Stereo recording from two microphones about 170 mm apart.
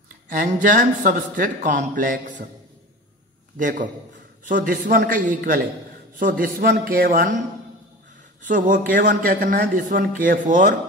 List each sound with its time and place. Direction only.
0.3 s a man's voice: 55° right (ahead or behind)
3.5 s a man's voice: 50° right (ahead or behind)
8.4 s a man's voice: 50° right (ahead or behind)